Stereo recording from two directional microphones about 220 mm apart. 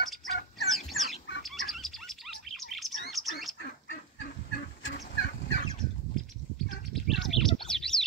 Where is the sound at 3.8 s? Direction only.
45° left (ahead or behind).